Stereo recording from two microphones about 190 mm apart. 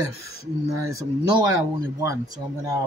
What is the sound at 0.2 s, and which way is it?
Speech, 15° right (ahead or behind).